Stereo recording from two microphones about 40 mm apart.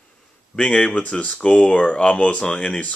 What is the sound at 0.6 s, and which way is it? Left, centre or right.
Speech, left.